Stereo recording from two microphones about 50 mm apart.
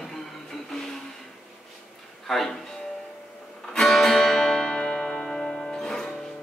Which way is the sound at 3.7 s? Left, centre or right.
Centre.